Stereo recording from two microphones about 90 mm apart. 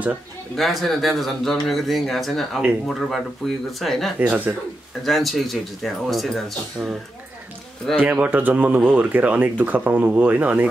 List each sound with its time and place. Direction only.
0.6 s speech: centre (ahead or behind)
4.2 s speech: 15° right (ahead or behind)
5.0 s speech: centre (ahead or behind)
8.2 s speech: 20° right (ahead or behind)